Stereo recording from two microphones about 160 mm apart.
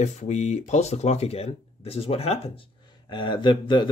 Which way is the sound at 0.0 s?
45° left (ahead or behind).